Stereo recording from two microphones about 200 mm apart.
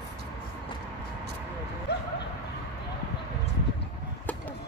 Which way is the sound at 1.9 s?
55° left (ahead or behind).